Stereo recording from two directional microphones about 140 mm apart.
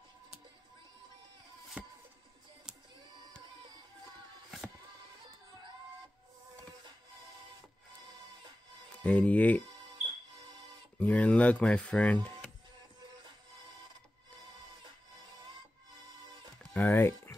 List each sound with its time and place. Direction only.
1.8 s music: 10° right (ahead or behind)
9.0 s speech: 10° left (ahead or behind)
11.0 s speech: 10° left (ahead or behind)
16.7 s a sound: 15° left (ahead or behind)